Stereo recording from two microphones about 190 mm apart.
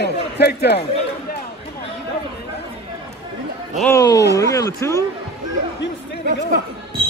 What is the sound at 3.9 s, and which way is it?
Speech, 15° left (ahead or behind).